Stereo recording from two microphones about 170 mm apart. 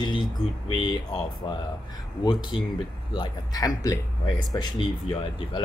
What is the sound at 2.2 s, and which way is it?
Speech, 25° left (ahead or behind).